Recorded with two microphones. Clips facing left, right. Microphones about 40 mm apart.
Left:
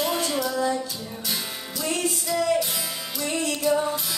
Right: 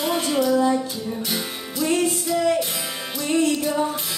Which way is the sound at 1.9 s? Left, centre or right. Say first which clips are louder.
Right 5 dB; right.